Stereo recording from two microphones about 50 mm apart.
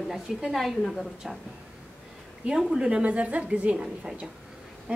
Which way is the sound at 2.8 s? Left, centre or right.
Right.